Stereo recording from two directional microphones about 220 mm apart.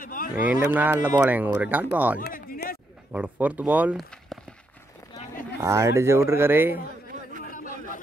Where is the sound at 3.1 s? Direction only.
5° right (ahead or behind).